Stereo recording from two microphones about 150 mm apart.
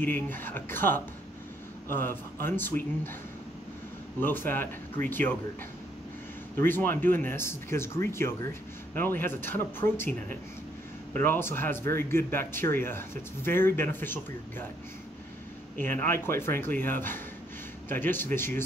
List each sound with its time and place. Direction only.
0.0 s speech: 15° left (ahead or behind)
4.2 s speech: 15° left (ahead or behind)
6.6 s speech: 15° left (ahead or behind)
15.8 s speech: 15° left (ahead or behind)